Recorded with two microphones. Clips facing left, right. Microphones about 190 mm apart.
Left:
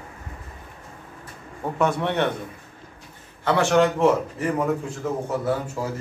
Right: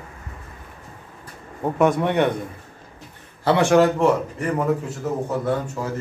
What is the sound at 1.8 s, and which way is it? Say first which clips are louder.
Speech: right 4 dB; 15° right (ahead or behind).